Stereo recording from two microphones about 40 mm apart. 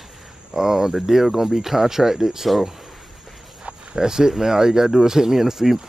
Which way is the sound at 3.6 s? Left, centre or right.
Centre.